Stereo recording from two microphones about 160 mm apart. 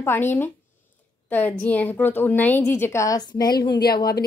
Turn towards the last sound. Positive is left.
turn(degrees=75)  # may be behind; listen again after turning